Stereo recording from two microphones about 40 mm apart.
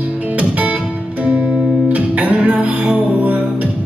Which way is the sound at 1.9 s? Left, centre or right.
Right.